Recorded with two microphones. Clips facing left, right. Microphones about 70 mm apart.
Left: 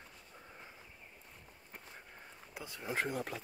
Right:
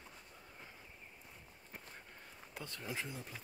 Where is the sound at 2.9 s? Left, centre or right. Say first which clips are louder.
Left 8 dB; left.